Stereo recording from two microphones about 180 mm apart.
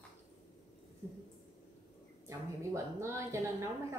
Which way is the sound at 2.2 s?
15° right (ahead or behind).